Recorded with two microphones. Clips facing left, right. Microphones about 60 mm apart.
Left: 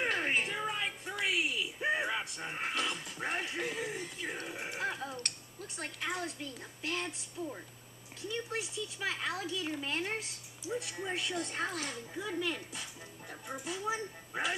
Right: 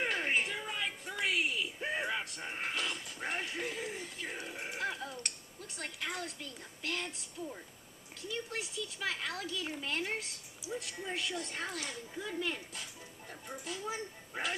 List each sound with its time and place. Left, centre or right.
0.0 s music: centre
0.5 s music: centre
1.1 s a sound: centre
2.4 s television: centre
4.7 s a sound: centre
5.9 s speech: centre
12.4 s speech: centre
13.7 s speech: centre